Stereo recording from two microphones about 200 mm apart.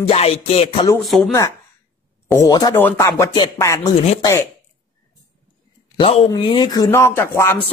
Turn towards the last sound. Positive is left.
turn(degrees=10)  # may be behind; listen again after turning